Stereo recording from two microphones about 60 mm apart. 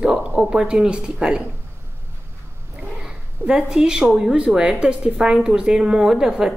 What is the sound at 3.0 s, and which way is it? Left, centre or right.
A woman's voice, centre.